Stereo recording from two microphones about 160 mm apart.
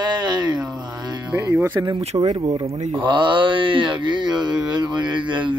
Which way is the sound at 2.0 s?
40° right (ahead or behind).